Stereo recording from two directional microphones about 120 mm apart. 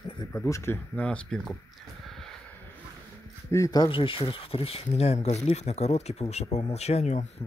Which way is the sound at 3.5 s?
30° left (ahead or behind).